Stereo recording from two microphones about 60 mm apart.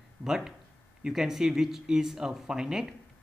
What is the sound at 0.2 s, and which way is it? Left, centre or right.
Speech, centre.